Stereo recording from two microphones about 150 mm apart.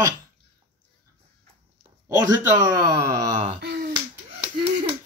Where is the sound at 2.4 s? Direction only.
20° right (ahead or behind).